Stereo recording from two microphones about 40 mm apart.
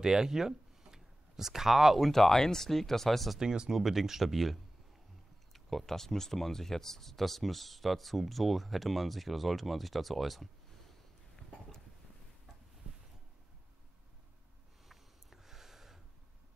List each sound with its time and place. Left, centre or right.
0.0 s a sound: centre
2.0 s speech: centre
3.3 s speech: centre
3.7 s speech: centre
14.9 s sniff: centre